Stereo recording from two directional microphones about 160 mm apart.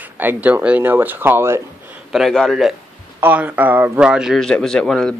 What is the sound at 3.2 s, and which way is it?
Speech, 10° right (ahead or behind).